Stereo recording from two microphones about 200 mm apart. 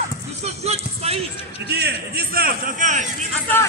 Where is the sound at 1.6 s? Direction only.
55° right (ahead or behind); by 3.1 s 40° right (ahead or behind).